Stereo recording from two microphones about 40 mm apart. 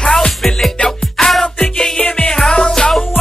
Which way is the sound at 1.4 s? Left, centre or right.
Left.